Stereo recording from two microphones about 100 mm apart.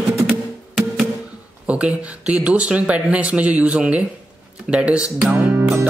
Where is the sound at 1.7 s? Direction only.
10° right (ahead or behind).